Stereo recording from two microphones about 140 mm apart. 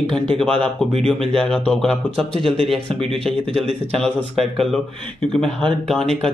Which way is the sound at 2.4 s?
40° right (ahead or behind).